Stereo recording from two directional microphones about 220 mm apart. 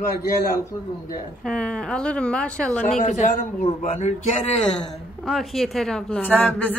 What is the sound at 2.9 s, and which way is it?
A man's voice, 30° left (ahead or behind).